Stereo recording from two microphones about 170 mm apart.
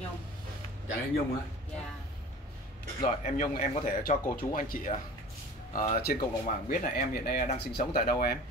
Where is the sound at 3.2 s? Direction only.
45° left (ahead or behind).